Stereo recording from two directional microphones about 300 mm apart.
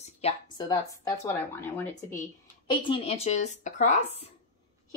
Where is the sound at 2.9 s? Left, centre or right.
Left.